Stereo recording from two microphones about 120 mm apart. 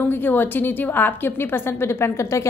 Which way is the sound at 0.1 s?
15° left (ahead or behind).